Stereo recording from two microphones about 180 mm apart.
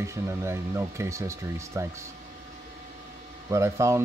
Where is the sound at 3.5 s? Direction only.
15° right (ahead or behind).